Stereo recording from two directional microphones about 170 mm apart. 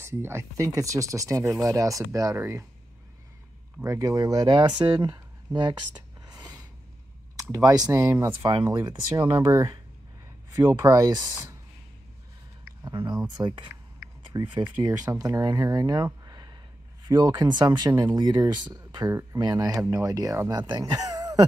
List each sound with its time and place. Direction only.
0.0 s speech: 15° right (ahead or behind)
3.8 s speech: 20° right (ahead or behind)
6.2 s a sound: 20° right (ahead or behind)
7.3 s speech: 20° right (ahead or behind)
12.8 s speech: 25° right (ahead or behind)